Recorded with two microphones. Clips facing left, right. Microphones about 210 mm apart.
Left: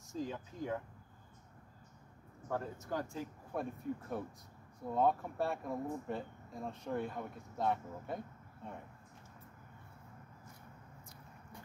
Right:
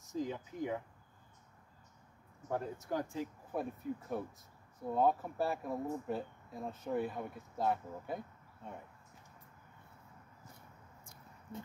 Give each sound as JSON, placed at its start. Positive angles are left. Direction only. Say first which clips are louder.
{"t": 0.0, "sound": "speech", "louder": "right 2 dB", "side_deg": -15}
{"t": 2.5, "sound": "speech", "louder": "right 2 dB", "side_deg": -15}
{"t": 3.5, "sound": "speech", "louder": "right 1 dB", "side_deg": -5}